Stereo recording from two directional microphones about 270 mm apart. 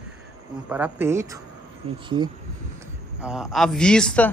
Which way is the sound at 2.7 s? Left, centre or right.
Centre.